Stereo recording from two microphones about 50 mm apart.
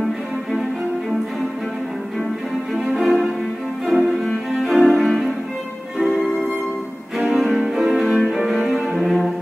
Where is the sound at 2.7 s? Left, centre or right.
Centre.